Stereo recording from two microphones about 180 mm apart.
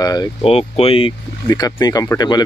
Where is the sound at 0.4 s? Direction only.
35° left (ahead or behind).